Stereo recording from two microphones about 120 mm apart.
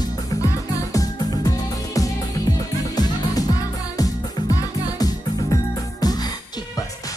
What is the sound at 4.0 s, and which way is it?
Music, 30° left (ahead or behind).